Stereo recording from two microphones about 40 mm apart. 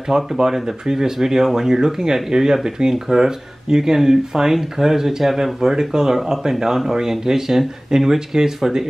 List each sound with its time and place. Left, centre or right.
0.1 s speech: centre